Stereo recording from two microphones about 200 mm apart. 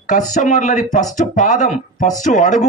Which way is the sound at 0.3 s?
40° left (ahead or behind).